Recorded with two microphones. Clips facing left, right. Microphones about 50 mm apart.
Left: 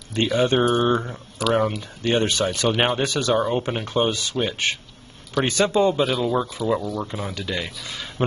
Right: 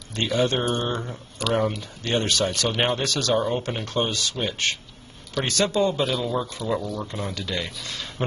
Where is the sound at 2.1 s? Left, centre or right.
Centre.